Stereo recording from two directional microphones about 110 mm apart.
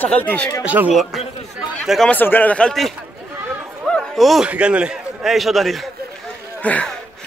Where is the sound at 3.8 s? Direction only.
5° left (ahead or behind).